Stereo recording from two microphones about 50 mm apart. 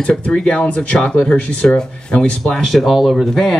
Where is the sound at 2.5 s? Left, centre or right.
Centre.